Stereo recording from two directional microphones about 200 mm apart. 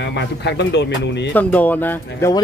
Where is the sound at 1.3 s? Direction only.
10° left (ahead or behind).